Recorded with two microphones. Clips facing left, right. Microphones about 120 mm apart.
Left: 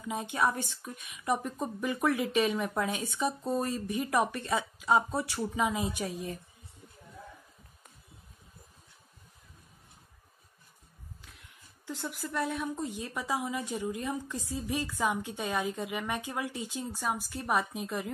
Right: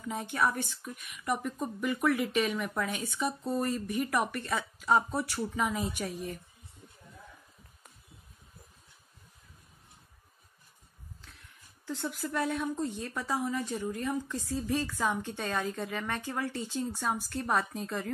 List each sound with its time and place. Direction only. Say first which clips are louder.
0.1 s speech: left 1 dB; 20° left (ahead or behind)
11.8 s a woman's voice: right 2 dB; 10° left (ahead or behind)